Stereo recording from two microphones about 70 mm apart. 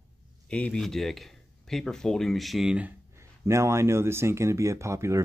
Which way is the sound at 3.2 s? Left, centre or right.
Right.